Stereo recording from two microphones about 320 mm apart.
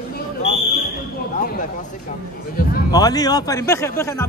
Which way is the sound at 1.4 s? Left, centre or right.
Left.